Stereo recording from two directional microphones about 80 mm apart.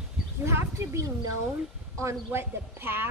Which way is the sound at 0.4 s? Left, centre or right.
Right.